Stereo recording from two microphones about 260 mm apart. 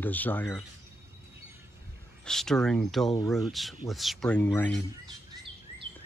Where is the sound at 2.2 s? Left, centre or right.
Centre.